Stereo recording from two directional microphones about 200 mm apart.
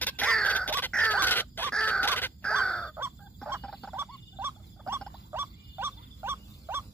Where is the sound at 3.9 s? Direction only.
10° right (ahead or behind).